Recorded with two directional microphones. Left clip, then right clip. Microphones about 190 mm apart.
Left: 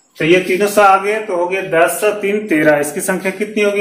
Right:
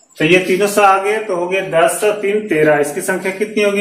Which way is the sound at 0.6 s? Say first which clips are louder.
Left 1 dB; 30° left (ahead or behind).